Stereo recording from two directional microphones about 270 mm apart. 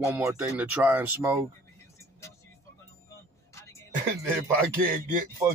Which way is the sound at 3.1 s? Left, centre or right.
Centre.